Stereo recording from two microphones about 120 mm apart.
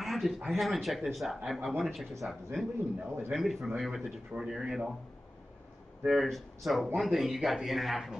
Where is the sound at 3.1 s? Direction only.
15° right (ahead or behind).